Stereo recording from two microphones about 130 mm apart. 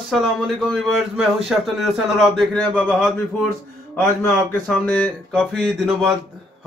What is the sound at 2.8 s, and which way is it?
Speech, 5° right (ahead or behind).